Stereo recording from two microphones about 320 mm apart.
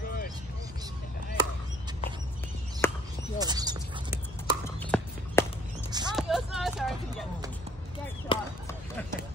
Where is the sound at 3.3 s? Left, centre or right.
Centre.